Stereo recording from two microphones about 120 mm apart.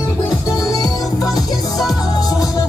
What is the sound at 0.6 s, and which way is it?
Music, 30° left (ahead or behind).